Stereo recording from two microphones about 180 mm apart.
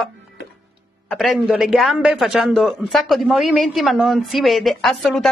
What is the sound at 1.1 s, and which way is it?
A man's voice, centre (ahead or behind).